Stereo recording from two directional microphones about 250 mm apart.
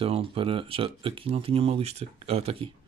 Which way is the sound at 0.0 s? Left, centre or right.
Right.